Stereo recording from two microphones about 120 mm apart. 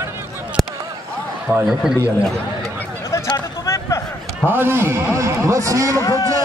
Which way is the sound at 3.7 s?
25° left (ahead or behind).